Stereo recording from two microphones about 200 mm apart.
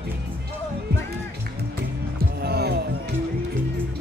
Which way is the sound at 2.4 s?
55° right (ahead or behind).